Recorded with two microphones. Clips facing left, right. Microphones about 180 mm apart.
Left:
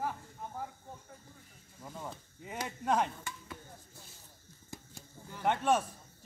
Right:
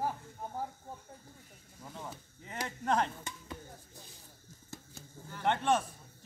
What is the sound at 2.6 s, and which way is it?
Speech, 10° left (ahead or behind).